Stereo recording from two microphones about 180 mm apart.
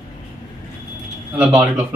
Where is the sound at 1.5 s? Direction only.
10° right (ahead or behind).